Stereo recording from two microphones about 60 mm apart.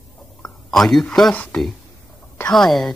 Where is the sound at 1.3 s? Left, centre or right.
Left.